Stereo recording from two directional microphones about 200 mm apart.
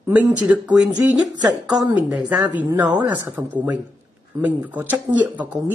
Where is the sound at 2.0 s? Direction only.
5° right (ahead or behind).